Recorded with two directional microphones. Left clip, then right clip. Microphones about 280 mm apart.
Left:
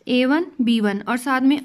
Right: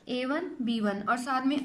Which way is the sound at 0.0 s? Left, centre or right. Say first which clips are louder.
Left 12 dB; left.